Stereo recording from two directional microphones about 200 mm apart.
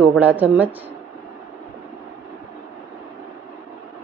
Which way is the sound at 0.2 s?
10° right (ahead or behind).